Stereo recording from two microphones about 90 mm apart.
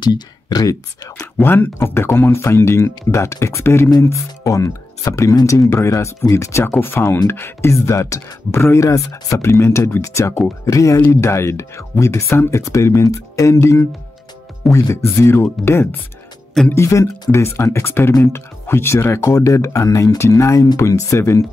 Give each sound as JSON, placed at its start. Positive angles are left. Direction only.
{"t": 0.0, "sound": "speech", "side_deg": 50}
{"t": 1.2, "sound": "speech", "side_deg": 20}
{"t": 8.8, "sound": "speech", "side_deg": 40}